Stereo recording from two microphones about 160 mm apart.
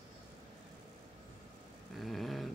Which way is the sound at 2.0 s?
Centre (ahead or behind).